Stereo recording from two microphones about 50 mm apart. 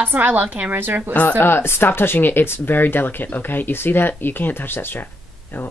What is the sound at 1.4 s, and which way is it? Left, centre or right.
Speech, left.